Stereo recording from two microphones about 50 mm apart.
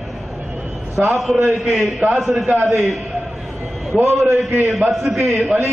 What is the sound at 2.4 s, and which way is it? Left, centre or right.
Speech, right.